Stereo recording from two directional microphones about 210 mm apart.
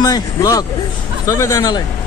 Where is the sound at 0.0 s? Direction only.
15° left (ahead or behind).